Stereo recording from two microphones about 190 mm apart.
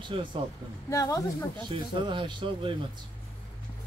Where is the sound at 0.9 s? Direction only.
15° left (ahead or behind).